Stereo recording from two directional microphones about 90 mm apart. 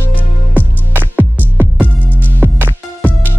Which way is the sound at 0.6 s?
20° right (ahead or behind).